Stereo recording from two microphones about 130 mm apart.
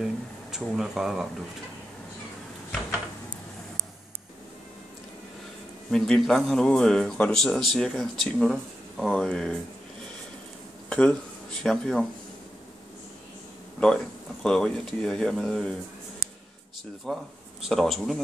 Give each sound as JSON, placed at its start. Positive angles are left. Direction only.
{"t": 0.0, "sound": "a sound", "side_deg": -5}
{"t": 5.9, "sound": "speech", "side_deg": 5}
{"t": 10.9, "sound": "speech", "side_deg": 10}
{"t": 14.4, "sound": "speech", "side_deg": 5}
{"t": 17.0, "sound": "a man's voice", "side_deg": 0}